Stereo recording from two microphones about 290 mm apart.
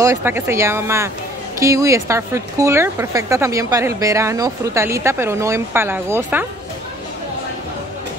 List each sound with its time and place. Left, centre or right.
0.0 s speech: centre